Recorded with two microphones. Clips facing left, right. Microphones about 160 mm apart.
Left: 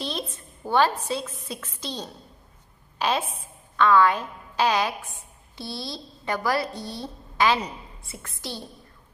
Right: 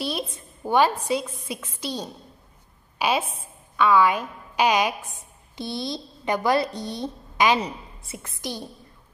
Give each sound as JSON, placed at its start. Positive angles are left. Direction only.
{"t": 0.0, "sound": "a woman's voice", "side_deg": -10}